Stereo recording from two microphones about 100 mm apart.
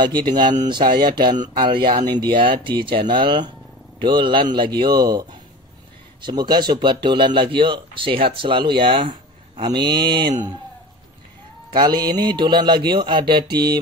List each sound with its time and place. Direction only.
0.0 s speech: 50° right (ahead or behind)
9.6 s speech: 50° right (ahead or behind)
11.7 s speech: 45° right (ahead or behind)